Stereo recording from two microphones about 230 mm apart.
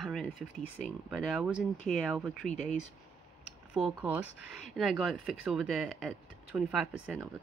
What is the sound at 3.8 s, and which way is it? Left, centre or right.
Speech, centre.